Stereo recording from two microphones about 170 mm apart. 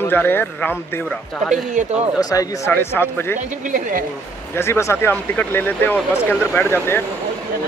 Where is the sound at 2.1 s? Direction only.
20° left (ahead or behind).